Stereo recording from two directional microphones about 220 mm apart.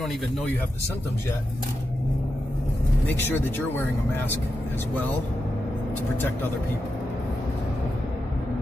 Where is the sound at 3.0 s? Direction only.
10° left (ahead or behind).